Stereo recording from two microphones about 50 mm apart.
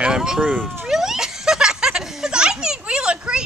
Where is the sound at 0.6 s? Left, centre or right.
Centre.